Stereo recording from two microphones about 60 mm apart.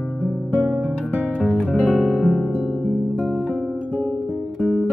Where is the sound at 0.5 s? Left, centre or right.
Left.